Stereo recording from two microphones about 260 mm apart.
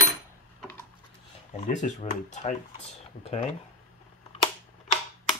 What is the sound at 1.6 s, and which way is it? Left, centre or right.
Speech, left.